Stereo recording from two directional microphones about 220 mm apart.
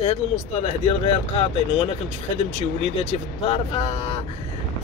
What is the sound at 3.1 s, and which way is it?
Speech, 25° left (ahead or behind).